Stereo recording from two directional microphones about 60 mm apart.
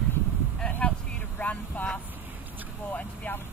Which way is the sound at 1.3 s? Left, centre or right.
Left.